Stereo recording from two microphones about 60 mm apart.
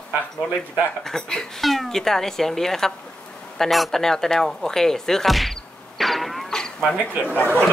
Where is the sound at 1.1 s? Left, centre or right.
Centre.